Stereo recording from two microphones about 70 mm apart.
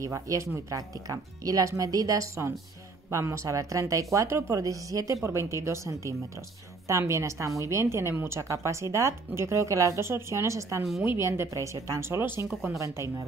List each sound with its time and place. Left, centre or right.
0.0 s speech: right
5.2 s speech: right
8.4 s a woman's voice: right